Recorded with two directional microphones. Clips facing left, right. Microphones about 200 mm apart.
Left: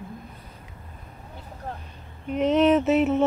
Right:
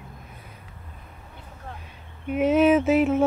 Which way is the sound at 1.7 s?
40° left (ahead or behind).